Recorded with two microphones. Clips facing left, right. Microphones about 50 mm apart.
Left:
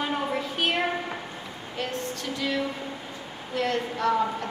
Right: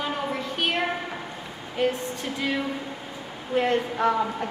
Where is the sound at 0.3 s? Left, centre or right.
Centre.